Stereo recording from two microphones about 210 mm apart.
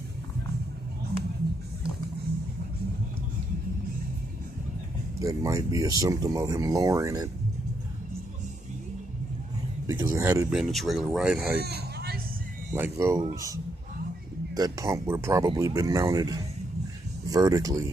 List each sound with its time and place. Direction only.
5.2 s speech: 15° right (ahead or behind)
9.8 s speech: 15° right (ahead or behind)
10.5 s speech: centre (ahead or behind)
11.6 s hubbub: 50° right (ahead or behind)
12.7 s speech: 10° right (ahead or behind)